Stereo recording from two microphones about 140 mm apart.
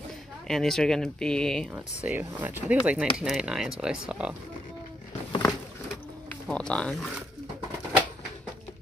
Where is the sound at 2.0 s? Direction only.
15° right (ahead or behind).